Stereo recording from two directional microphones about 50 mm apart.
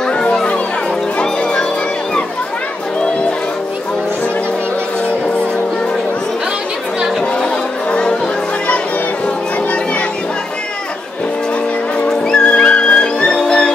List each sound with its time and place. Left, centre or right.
0.0 s music: centre
7.9 s music: centre
12.1 s music: centre